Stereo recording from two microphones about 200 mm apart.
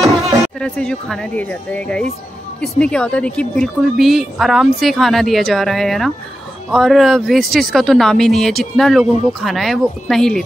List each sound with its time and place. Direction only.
0.6 s speech: 5° left (ahead or behind)